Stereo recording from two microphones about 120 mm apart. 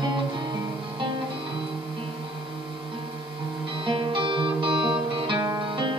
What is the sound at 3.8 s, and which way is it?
Music, 45° right (ahead or behind).